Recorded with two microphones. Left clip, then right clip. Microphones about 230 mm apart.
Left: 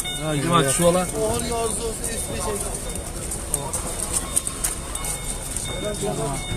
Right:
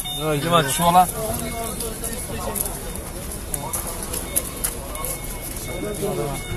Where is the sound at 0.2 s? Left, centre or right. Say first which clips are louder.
Right 2 dB; right.